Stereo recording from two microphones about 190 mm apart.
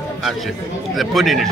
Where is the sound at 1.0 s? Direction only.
Centre (ahead or behind).